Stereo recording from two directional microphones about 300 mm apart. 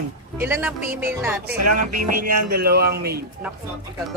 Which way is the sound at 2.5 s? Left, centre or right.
Right.